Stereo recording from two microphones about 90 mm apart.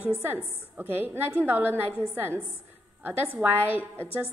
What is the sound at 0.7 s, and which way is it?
A woman's voice, 20° right (ahead or behind).